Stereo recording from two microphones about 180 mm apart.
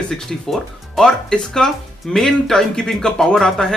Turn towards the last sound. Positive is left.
turn(degrees=5)  # may be behind; listen again after turning